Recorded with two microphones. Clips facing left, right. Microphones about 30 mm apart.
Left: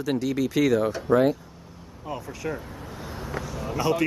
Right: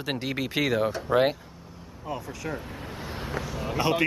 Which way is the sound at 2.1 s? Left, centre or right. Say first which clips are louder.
Left 2 dB; centre.